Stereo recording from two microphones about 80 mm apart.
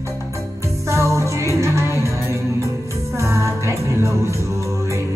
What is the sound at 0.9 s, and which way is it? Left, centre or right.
Music, right.